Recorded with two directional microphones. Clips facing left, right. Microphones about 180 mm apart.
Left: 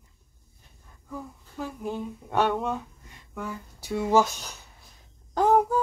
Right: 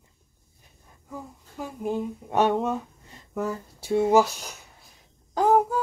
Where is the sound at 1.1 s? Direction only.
15° right (ahead or behind).